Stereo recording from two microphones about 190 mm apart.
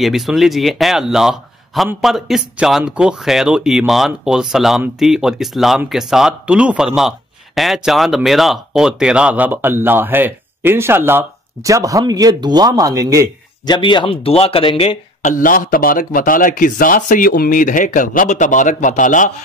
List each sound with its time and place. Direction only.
0.0 s speech: centre (ahead or behind); by 13.3 s 15° right (ahead or behind)
13.7 s speech: 25° left (ahead or behind)
15.2 s speech: 45° left (ahead or behind)